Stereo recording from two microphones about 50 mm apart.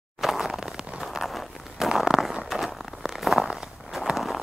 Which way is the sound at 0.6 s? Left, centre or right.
Centre.